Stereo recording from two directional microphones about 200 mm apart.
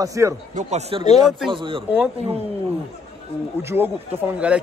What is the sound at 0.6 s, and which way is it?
A man's voice, 35° right (ahead or behind).